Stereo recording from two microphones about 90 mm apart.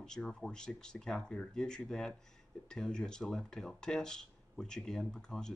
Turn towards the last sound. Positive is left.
turn(degrees=5)  # may be behind; listen again after turning